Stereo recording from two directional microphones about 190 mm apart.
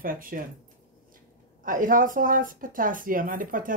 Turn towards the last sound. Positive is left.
turn(degrees=-45)  # may be behind; listen again after turning